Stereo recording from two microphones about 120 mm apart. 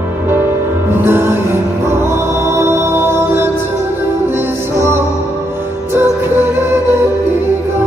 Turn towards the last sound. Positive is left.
turn(degrees=-20)  # may be behind; listen again after turning